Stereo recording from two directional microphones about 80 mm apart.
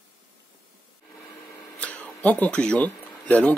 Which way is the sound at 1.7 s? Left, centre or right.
Centre.